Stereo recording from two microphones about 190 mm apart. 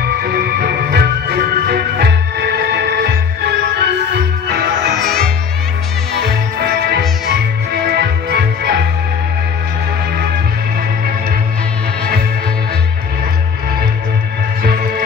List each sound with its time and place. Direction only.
0.2 s music: 55° right (ahead or behind)
4.9 s music: centre (ahead or behind)
6.2 s music: 60° right (ahead or behind)